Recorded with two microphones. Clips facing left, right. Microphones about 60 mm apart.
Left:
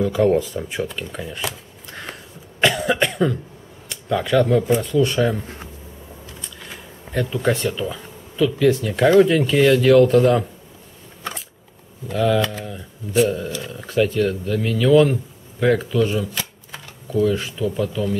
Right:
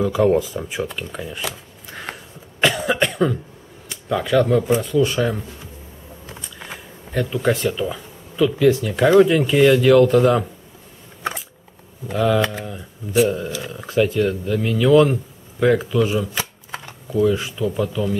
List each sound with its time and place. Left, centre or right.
0.0 s speech: centre
2.6 s cough: centre
3.9 s speech: centre
7.1 s speech: centre
12.1 s speech: centre
16.3 s shuffling cards: right
17.1 s speech: centre